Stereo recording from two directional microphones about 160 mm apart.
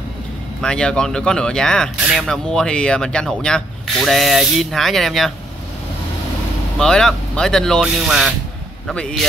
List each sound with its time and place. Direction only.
0.6 s speech: 5° left (ahead or behind)
6.8 s speech: 5° left (ahead or behind)